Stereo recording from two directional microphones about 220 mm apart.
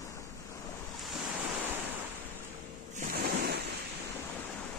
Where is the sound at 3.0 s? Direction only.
40° right (ahead or behind).